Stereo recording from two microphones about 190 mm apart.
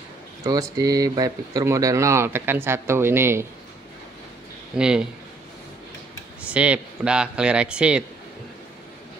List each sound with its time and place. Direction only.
0.4 s speech: 20° right (ahead or behind)
4.7 s speech: 5° right (ahead or behind)
6.5 s speech: 5° right (ahead or behind)